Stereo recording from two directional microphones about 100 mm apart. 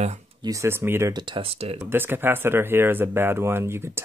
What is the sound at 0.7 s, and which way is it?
Speech, 25° right (ahead or behind).